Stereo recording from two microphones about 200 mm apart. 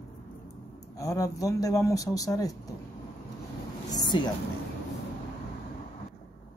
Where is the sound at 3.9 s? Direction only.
20° left (ahead or behind).